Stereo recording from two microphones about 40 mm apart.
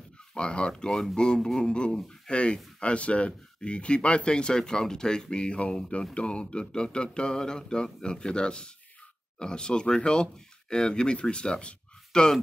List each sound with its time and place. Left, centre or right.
0.3 s speech: left
2.2 s speech: left